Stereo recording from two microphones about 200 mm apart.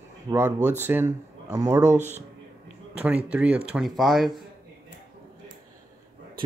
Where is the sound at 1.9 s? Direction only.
35° right (ahead or behind).